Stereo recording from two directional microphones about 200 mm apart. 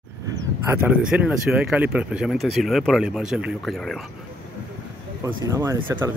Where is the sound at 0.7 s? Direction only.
10° right (ahead or behind).